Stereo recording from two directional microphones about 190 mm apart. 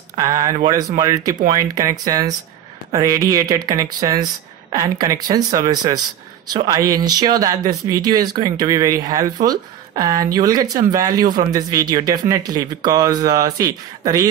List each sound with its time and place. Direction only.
0.2 s speech: 20° right (ahead or behind)